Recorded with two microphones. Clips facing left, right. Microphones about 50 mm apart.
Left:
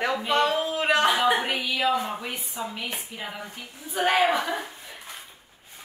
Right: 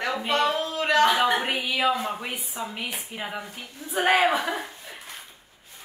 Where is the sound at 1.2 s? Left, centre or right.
Centre.